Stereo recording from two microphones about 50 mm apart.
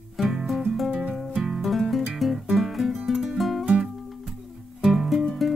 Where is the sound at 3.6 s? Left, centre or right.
Centre.